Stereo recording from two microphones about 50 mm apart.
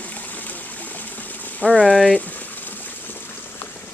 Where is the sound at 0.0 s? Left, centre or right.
Left.